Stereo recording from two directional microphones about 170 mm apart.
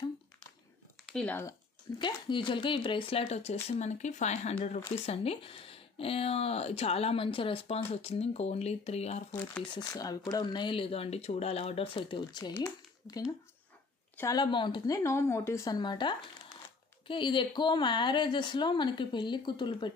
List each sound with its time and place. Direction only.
1.1 s speech: 10° left (ahead or behind)
2.0 s speech: 30° left (ahead or behind)
9.7 s speech: 20° left (ahead or behind)
15.0 s speech: 15° left (ahead or behind)